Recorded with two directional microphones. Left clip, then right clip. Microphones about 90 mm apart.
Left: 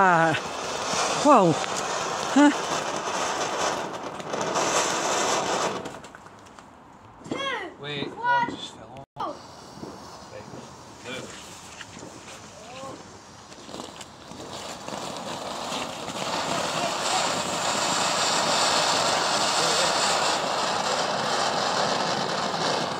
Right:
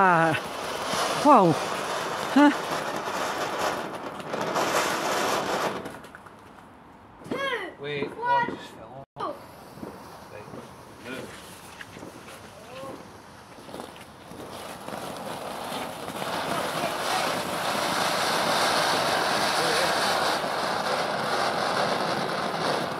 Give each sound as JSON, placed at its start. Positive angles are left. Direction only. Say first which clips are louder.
{"t": 0.0, "sound": "speech", "louder": "left 1 dB", "side_deg": 0}
{"t": 0.4, "sound": "vehicle", "louder": "left 1 dB", "side_deg": 40}
{"t": 1.4, "sound": "a sound", "louder": "even", "side_deg": 20}
{"t": 2.5, "sound": "rain", "louder": "left 1 dB", "side_deg": 40}
{"t": 7.2, "sound": "a sound", "louder": "even", "side_deg": -25}
{"t": 14.5, "sound": "vehicle", "louder": "left 2 dB", "side_deg": 25}